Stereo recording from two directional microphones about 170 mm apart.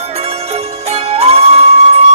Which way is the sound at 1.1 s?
35° right (ahead or behind).